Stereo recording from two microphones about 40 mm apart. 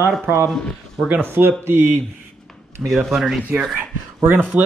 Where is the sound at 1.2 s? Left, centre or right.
Right.